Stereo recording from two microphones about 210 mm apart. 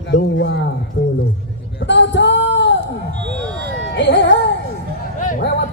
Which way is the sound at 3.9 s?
55° left (ahead or behind).